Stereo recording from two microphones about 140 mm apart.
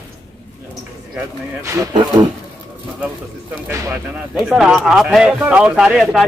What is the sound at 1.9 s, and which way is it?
Speech, 30° right (ahead or behind).